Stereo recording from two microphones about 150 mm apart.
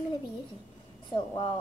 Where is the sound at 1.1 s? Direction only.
35° left (ahead or behind).